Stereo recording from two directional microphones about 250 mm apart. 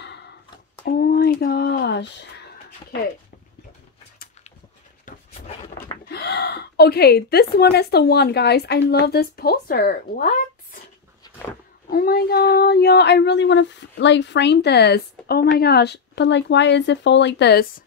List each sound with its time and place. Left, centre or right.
0.8 s a sound: left
6.0 s a woman's voice: left
11.9 s speech: left